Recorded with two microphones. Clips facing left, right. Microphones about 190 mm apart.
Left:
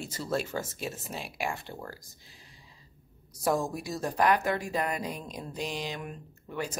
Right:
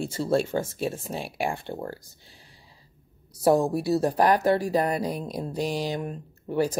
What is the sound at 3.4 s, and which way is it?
Speech, 35° right (ahead or behind).